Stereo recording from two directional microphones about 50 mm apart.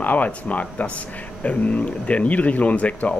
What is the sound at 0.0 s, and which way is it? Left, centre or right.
Speech, left.